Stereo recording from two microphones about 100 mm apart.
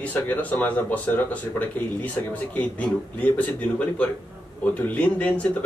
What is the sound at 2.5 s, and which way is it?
Speech, 15° left (ahead or behind).